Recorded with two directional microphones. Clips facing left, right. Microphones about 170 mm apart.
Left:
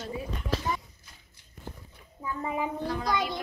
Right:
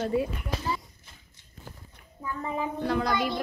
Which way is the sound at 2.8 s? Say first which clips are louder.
Right 4 dB; 65° right (ahead or behind).